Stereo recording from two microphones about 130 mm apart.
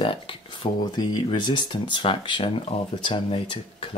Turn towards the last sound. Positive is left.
turn(degrees=45)  # may be behind; listen again after turning